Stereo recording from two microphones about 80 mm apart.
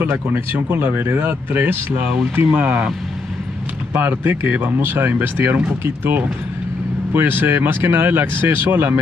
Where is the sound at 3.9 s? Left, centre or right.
Right.